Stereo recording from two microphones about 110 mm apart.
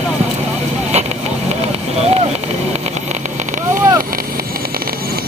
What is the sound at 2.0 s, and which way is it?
Boat, 70° right (ahead or behind).